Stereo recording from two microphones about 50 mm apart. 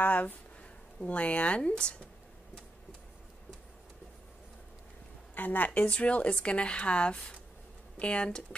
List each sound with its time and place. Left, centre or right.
0.0 s speech: left
5.3 s a woman's voice: left
5.9 s speech: left